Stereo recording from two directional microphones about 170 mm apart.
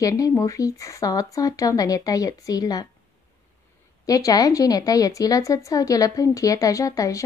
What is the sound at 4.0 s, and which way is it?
A woman's voice, 20° left (ahead or behind).